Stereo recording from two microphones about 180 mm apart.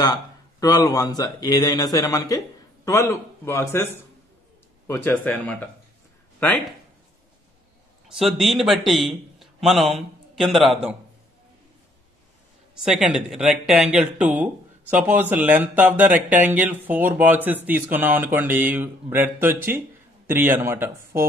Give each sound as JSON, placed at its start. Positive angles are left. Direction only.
{"t": 0.0, "sound": "speech", "side_deg": 20}
{"t": 8.2, "sound": "a man's voice", "side_deg": 0}
{"t": 12.8, "sound": "speech", "side_deg": -5}